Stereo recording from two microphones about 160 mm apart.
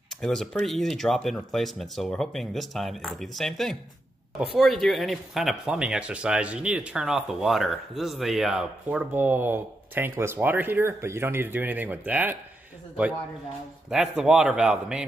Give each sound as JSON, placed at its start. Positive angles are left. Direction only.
{"t": 0.2, "sound": "speech", "side_deg": 5}
{"t": 13.8, "sound": "speech", "side_deg": -5}